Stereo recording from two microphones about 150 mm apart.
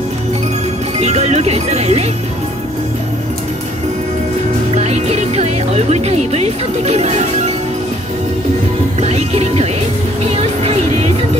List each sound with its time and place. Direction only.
0.9 s speech: 45° right (ahead or behind)
4.7 s music: 50° right (ahead or behind)
9.0 s speech: 45° right (ahead or behind)
10.2 s music: 45° right (ahead or behind)